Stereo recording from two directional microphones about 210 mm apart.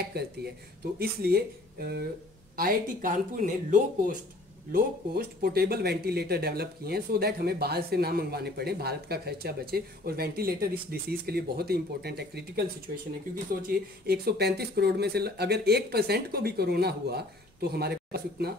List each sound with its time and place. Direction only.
0.0 s speech: 50° right (ahead or behind)
14.0 s speech: 50° right (ahead or behind)